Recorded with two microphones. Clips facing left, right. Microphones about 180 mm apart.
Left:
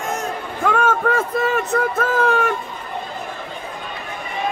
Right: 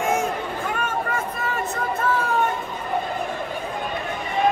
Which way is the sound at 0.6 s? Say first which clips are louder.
Left 13 dB; 90° left.